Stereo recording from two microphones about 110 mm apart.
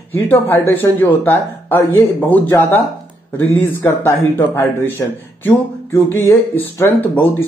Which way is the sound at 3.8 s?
20° left (ahead or behind).